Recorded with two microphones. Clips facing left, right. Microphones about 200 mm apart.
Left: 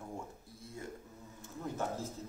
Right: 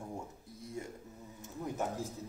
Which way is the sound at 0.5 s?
20° right (ahead or behind).